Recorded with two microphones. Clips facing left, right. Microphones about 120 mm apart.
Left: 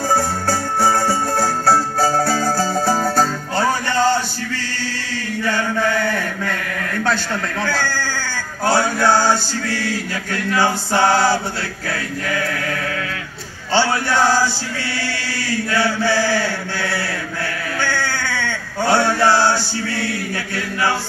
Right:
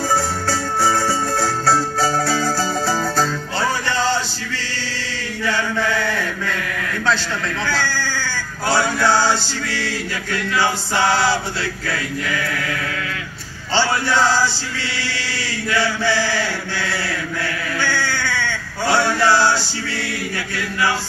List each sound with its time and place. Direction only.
0.1 s music: 50° left (ahead or behind)
5.4 s chant: 50° left (ahead or behind)
7.6 s speech: 50° left (ahead or behind)
11.9 s chant: 50° left (ahead or behind)
13.7 s a man's voice: 50° left (ahead or behind)
15.0 s chant: 50° left (ahead or behind)
17.7 s male singing: 50° left (ahead or behind)